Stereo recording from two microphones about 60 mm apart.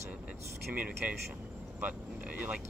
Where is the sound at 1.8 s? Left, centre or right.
Right.